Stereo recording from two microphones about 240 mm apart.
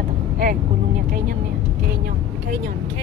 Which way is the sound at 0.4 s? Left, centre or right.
Right.